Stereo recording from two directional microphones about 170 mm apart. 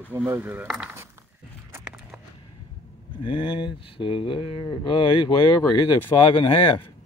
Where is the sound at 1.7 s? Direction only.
10° right (ahead or behind).